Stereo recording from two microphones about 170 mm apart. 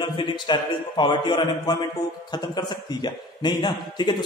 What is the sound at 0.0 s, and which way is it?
A man's voice, 25° left (ahead or behind).